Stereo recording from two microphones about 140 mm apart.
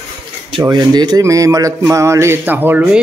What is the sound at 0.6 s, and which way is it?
Speech, 25° right (ahead or behind).